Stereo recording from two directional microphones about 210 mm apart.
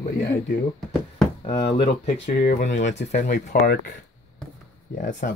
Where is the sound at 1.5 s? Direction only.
30° left (ahead or behind).